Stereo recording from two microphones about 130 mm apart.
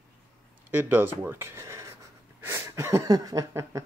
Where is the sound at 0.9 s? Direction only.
15° right (ahead or behind).